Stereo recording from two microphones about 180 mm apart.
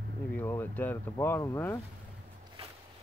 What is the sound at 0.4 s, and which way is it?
Speech, 15° left (ahead or behind).